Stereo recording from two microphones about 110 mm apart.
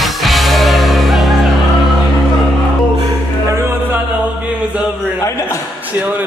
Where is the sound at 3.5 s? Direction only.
25° right (ahead or behind).